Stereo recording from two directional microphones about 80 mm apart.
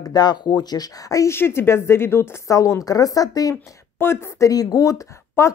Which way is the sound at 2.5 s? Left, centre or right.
Left.